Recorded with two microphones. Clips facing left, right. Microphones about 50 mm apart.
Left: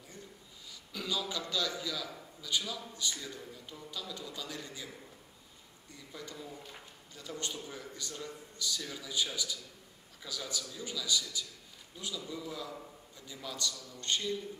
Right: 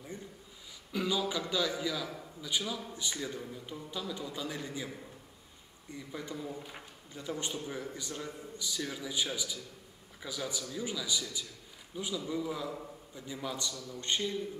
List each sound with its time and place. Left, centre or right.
0.9 s a man's voice: centre
5.9 s a man's voice: centre